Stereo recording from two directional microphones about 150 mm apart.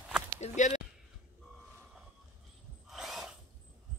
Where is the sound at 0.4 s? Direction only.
50° left (ahead or behind).